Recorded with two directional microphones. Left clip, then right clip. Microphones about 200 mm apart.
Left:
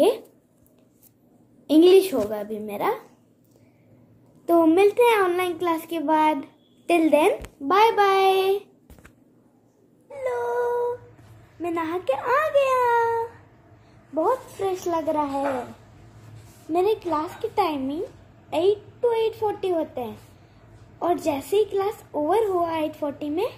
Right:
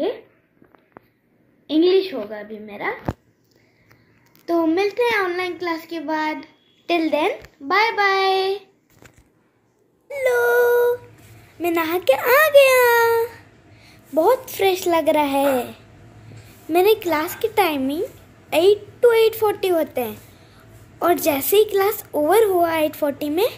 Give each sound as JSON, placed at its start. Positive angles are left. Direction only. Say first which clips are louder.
{"t": 1.7, "sound": "a child's voice", "louder": "left 2 dB", "side_deg": 0}
{"t": 4.5, "sound": "a child's voice", "louder": "left 2 dB", "side_deg": 0}
{"t": 10.1, "sound": "a child's voice", "louder": "right 9 dB", "side_deg": -10}
{"t": 16.7, "sound": "a child's voice", "louder": "right 6 dB", "side_deg": -5}